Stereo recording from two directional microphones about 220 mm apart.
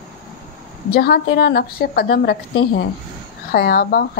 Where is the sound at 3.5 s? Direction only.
45° left (ahead or behind).